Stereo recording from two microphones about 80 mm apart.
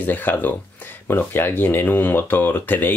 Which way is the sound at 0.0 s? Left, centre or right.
Left.